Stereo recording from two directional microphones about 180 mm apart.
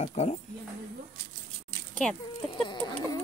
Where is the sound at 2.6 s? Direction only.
30° left (ahead or behind).